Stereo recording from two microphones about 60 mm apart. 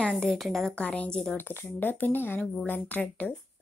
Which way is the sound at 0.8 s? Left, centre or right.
Centre.